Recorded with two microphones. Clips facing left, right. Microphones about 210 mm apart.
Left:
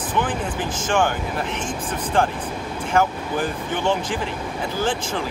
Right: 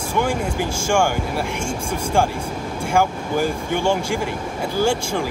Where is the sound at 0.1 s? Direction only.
10° right (ahead or behind).